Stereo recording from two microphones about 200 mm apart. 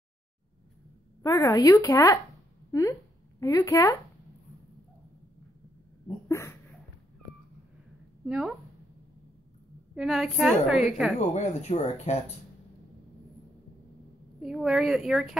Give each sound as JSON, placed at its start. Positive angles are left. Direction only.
{"t": 1.2, "sound": "speech", "side_deg": 15}
{"t": 6.2, "sound": "dog", "side_deg": 10}
{"t": 8.3, "sound": "a woman's voice", "side_deg": -5}
{"t": 9.9, "sound": "a woman's voice", "side_deg": 0}
{"t": 11.1, "sound": "speech", "side_deg": 35}
{"t": 14.4, "sound": "a woman's voice", "side_deg": 0}